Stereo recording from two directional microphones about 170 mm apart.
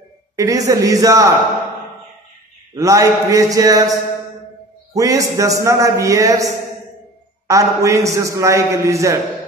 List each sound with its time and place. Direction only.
0.4 s a man's voice: 20° right (ahead or behind)
2.7 s a man's voice: 20° right (ahead or behind)
4.9 s a man's voice: 20° right (ahead or behind)